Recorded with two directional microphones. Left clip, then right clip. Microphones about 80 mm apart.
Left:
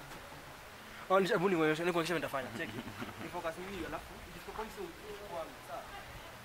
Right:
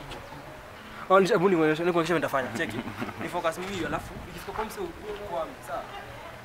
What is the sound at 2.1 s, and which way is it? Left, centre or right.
Speech, centre.